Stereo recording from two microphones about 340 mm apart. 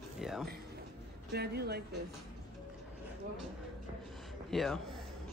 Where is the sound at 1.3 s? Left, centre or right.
Right.